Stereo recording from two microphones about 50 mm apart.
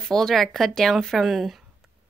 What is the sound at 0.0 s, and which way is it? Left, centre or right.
Speech, centre.